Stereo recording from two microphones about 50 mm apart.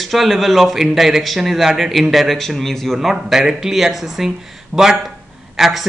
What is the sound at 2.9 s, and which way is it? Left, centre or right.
A man's voice, centre.